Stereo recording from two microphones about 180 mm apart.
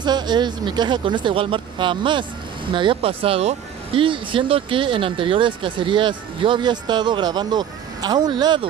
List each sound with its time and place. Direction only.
0.0 s speech: 25° right (ahead or behind)